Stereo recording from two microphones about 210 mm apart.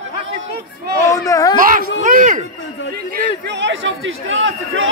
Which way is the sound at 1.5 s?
40° right (ahead or behind).